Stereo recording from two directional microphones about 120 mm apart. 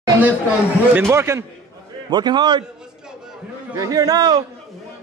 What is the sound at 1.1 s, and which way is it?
Speech, 25° right (ahead or behind).